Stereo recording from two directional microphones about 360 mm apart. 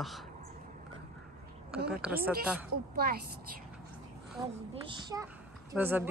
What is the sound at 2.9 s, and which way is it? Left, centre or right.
Speech, right.